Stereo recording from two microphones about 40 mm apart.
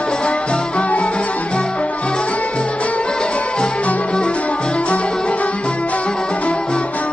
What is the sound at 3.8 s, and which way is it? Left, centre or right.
Music, left.